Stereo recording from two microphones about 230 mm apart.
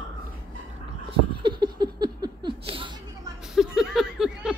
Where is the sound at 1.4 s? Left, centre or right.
Centre.